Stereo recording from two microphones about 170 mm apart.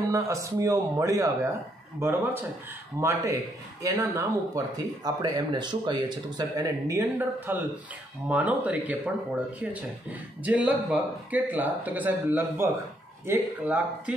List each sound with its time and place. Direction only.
0.1 s speech: 20° right (ahead or behind)